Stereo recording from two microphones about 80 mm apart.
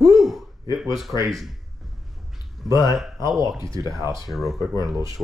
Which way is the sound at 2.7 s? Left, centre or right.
Right.